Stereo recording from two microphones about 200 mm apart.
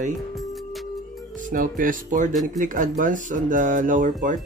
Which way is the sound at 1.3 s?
45° right (ahead or behind).